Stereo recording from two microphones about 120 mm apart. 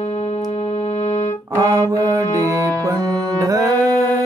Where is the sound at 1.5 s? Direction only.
30° right (ahead or behind).